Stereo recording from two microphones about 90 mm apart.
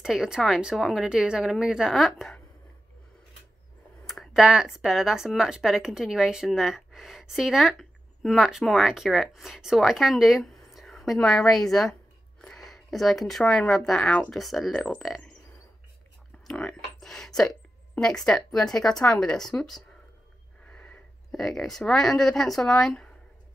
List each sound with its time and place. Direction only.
0.0 s speech: 5° right (ahead or behind)
4.0 s speech: centre (ahead or behind)
16.4 s a sound: 10° left (ahead or behind)
18.0 s speech: 5° left (ahead or behind)
20.6 s a sound: 15° left (ahead or behind)
21.3 s speech: 5° left (ahead or behind)